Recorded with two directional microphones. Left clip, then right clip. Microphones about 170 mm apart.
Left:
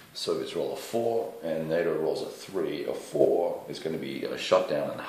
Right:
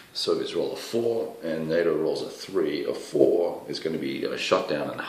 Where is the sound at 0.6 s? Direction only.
10° right (ahead or behind).